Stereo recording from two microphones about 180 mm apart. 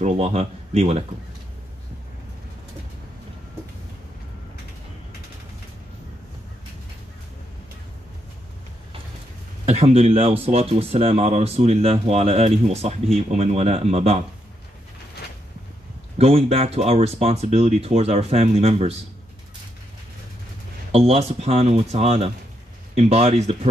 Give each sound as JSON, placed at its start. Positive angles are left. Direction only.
{"t": 0.0, "sound": "speech", "side_deg": -35}
{"t": 9.7, "sound": "speech", "side_deg": -35}
{"t": 16.2, "sound": "speech", "side_deg": -35}
{"t": 20.9, "sound": "speech", "side_deg": -35}